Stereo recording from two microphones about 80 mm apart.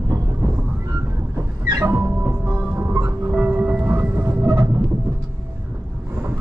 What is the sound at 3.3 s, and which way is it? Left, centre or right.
Train, right.